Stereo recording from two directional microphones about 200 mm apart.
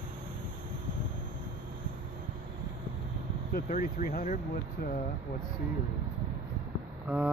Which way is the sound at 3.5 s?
45° left (ahead or behind).